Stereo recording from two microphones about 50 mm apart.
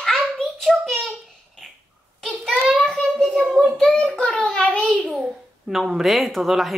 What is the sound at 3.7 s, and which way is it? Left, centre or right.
Child singing, centre.